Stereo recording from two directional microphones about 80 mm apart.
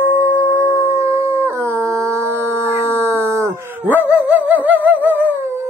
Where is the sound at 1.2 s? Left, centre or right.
Right.